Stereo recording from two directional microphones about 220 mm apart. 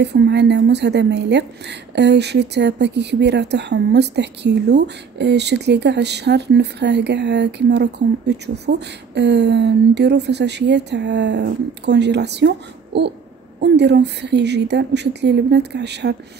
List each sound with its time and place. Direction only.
0.0 s a woman's voice: 50° right (ahead or behind)